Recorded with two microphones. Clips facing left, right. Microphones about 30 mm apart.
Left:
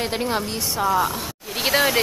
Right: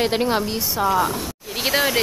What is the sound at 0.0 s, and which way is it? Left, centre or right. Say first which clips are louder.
Speech: right 4 dB; centre.